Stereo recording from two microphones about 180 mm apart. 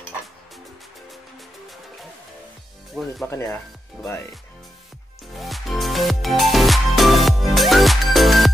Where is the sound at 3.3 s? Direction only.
15° left (ahead or behind).